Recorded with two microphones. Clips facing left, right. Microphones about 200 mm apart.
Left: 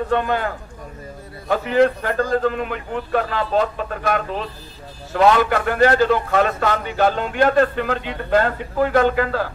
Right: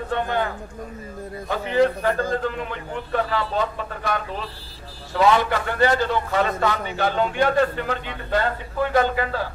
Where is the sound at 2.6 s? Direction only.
75° left (ahead or behind).